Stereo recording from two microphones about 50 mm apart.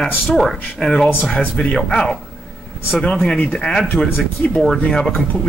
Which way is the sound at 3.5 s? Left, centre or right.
Centre.